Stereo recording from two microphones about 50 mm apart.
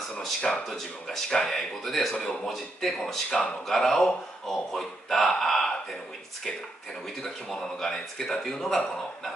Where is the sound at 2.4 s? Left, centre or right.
Centre.